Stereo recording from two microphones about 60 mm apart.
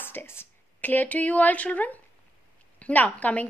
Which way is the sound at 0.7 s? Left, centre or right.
Left.